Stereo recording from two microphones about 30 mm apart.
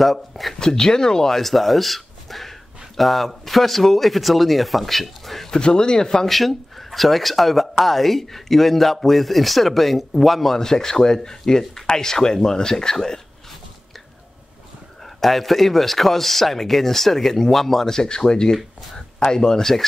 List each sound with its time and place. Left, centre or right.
0.0 s speech: centre
0.6 s speech: centre
1.3 s speech: centre
5.5 s speech: left
6.2 s speech: centre
10.6 s speech: centre
15.1 s speech: centre